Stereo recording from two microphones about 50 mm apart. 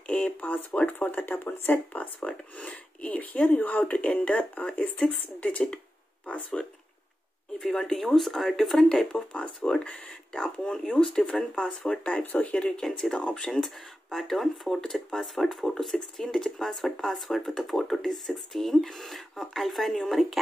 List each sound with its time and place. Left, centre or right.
0.0 s a sound: left
0.4 s speech: left
1.9 s speech: left
7.6 s speech: centre
8.8 s speech: centre
12.3 s speech: left
12.5 s speech: centre
12.8 s speech: centre
13.1 s speech: centre
14.1 s speech: centre